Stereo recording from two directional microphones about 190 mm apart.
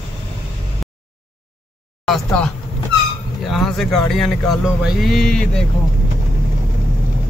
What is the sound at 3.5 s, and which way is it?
Speech, centre (ahead or behind).